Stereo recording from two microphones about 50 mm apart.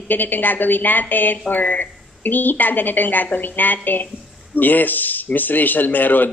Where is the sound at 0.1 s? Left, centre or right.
Left.